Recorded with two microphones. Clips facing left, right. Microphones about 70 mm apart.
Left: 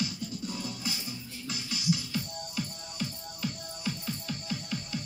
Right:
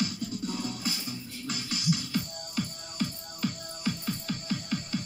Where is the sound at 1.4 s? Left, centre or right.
Right.